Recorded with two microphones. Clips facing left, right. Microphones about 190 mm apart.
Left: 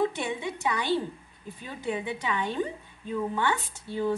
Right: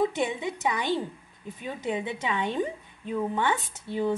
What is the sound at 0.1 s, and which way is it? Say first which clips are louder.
A woman's voice: right 3 dB; 20° right (ahead or behind).